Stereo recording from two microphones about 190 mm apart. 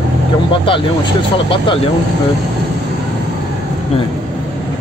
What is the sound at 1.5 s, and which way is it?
Speech, 25° left (ahead or behind).